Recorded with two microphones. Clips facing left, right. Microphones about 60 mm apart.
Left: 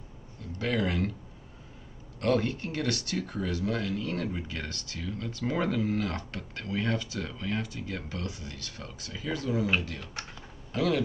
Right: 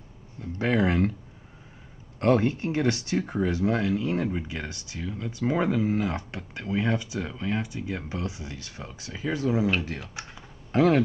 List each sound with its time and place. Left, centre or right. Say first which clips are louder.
0.4 s speech: right 5 dB; right
2.1 s speech: right 5 dB; right
10.7 s speech: right 7 dB; right